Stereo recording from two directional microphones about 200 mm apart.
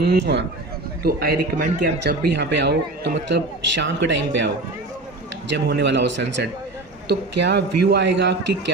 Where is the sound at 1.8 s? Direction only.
55° right (ahead or behind).